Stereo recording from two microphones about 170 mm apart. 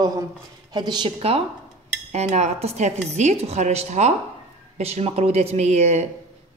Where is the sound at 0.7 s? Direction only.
25° right (ahead or behind).